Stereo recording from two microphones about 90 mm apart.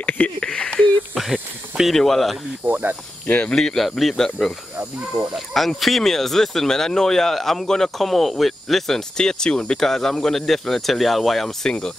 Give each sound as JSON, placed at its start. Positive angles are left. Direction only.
{"t": 0.0, "sound": "a sound", "side_deg": 10}
{"t": 1.1, "sound": "speech", "side_deg": 0}
{"t": 2.6, "sound": "speech", "side_deg": -20}
{"t": 3.3, "sound": "speech", "side_deg": 15}
{"t": 3.5, "sound": "speech", "side_deg": 5}
{"t": 5.2, "sound": "speech", "side_deg": -5}